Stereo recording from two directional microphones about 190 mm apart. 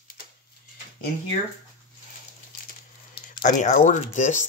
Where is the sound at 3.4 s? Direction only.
45° left (ahead or behind).